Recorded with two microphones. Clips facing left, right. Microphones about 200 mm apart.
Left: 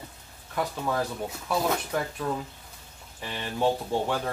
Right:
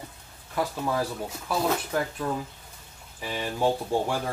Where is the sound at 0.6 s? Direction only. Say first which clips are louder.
Right 1 dB; 5° right (ahead or behind).